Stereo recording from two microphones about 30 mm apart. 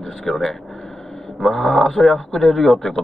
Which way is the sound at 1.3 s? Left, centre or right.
Centre.